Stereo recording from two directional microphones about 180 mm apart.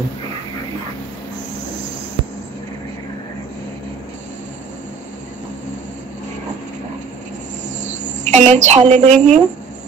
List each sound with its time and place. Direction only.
8.0 s speech: 40° right (ahead or behind)